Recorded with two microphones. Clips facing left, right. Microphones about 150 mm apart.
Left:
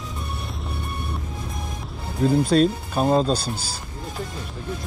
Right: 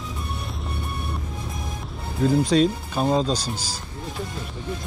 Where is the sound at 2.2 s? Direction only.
5° left (ahead or behind).